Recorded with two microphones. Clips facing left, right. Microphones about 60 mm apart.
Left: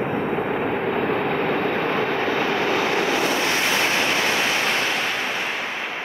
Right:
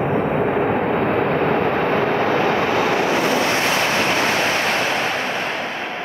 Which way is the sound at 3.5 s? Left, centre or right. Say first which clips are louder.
Right 3 dB; right.